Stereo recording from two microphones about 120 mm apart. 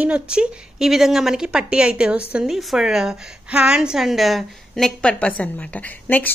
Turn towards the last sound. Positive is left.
turn(degrees=15)  # may be behind; listen again after turning